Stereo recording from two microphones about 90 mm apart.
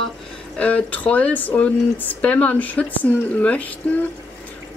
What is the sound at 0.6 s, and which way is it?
Speech, 15° left (ahead or behind).